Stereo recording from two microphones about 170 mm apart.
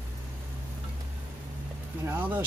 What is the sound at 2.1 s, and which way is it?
Speech, 10° right (ahead or behind).